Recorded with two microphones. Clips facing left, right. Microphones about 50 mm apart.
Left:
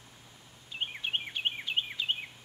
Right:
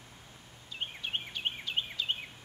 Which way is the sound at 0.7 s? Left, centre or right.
Left.